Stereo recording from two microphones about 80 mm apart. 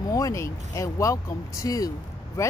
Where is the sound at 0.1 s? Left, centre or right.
Left.